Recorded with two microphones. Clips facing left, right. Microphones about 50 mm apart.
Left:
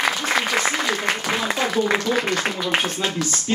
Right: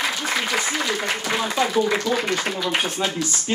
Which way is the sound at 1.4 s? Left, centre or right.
Left.